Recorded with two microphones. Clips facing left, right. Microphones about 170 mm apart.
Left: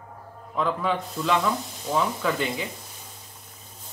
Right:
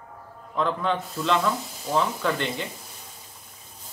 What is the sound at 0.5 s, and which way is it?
Speech, 5° left (ahead or behind).